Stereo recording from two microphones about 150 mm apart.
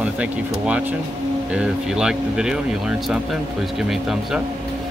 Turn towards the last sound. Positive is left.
turn(degrees=0)  # may be behind; listen again after turning